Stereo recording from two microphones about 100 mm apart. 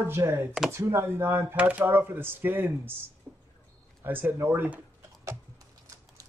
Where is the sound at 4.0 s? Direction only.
20° right (ahead or behind).